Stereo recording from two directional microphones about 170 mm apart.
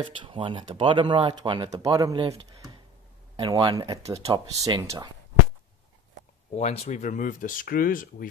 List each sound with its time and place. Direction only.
0.0 s speech: 30° right (ahead or behind)
3.3 s speech: 25° right (ahead or behind)
6.5 s speech: 40° left (ahead or behind); by 8.3 s 55° left (ahead or behind)